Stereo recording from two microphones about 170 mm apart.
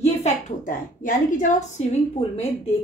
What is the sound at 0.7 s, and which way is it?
A woman's voice, 50° left (ahead or behind).